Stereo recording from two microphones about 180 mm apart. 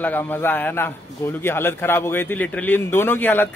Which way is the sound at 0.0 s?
10° left (ahead or behind).